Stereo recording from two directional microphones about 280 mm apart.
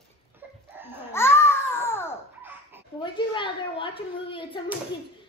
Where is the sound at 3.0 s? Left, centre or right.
Centre.